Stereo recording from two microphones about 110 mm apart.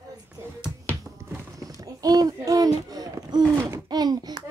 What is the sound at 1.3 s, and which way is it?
A child's voice, 35° right (ahead or behind).